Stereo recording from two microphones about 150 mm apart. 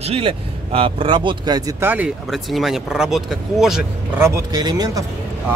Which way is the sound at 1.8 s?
15° right (ahead or behind).